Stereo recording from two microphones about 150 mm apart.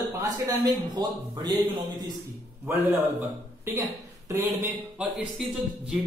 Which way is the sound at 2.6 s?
15° right (ahead or behind).